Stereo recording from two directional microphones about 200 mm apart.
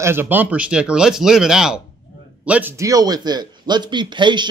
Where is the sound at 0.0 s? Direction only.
10° right (ahead or behind).